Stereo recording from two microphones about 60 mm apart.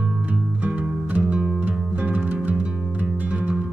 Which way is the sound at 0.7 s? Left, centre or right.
Right.